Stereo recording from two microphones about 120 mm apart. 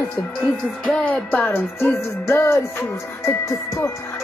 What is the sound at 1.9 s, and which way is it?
Music, 20° left (ahead or behind).